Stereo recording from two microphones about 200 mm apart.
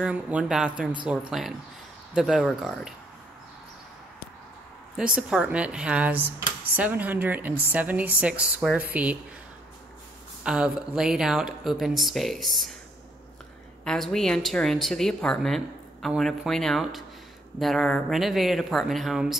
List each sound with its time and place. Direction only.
0.0 s a woman's voice: 5° right (ahead or behind)
4.9 s speech: 5° right (ahead or behind)
10.4 s a woman's voice: 5° right (ahead or behind)
13.8 s a woman's voice: centre (ahead or behind)